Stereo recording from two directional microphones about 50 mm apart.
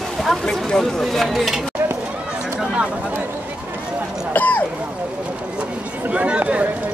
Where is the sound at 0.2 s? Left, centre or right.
Centre.